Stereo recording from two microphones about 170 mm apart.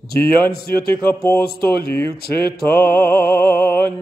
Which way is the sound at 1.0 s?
15° left (ahead or behind).